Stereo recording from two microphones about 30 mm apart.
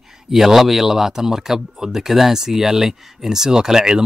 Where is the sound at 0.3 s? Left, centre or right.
Centre.